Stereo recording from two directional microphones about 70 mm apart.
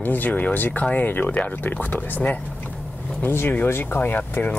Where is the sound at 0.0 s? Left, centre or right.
Left.